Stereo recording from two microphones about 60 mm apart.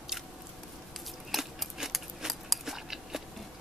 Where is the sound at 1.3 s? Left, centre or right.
Centre.